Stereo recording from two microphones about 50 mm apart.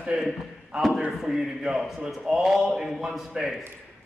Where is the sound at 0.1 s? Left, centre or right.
Centre.